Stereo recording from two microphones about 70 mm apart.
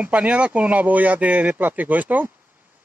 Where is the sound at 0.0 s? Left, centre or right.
Centre.